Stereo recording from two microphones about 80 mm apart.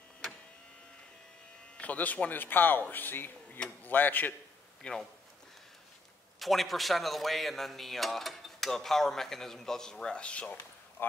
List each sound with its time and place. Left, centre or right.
1.8 s a man's voice: centre
6.4 s speech: centre
11.0 s a man's voice: left